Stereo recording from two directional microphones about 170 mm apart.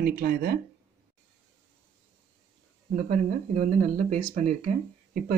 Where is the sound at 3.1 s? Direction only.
45° right (ahead or behind).